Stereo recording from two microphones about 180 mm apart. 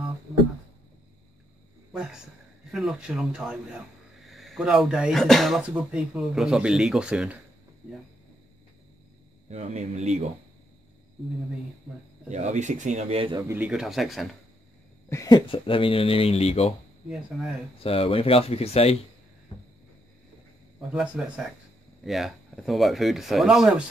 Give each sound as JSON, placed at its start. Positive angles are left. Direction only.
{"t": 1.9, "sound": "speech", "side_deg": -5}
{"t": 9.5, "sound": "a man's voice", "side_deg": -35}
{"t": 12.3, "sound": "a man's voice", "side_deg": -40}
{"t": 13.4, "sound": "speech", "side_deg": -15}
{"t": 13.7, "sound": "speech", "side_deg": 0}
{"t": 15.0, "sound": "speech", "side_deg": 20}
{"t": 17.7, "sound": "speech", "side_deg": 30}
{"t": 20.9, "sound": "speech", "side_deg": 0}